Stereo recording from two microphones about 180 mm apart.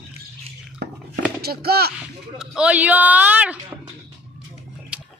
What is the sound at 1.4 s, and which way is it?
Speech, 60° right (ahead or behind).